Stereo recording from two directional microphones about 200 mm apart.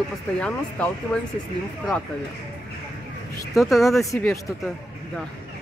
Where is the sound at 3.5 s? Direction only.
Centre (ahead or behind).